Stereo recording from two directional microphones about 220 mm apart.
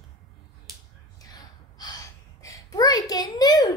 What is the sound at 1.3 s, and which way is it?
Gasp, 15° left (ahead or behind).